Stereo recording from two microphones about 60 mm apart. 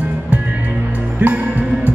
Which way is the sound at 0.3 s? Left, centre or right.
Right.